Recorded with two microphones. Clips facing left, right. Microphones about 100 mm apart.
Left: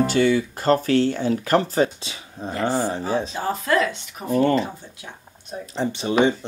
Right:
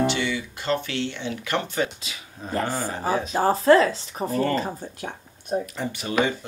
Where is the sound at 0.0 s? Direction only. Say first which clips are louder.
Left 6 dB; 45° left (ahead or behind).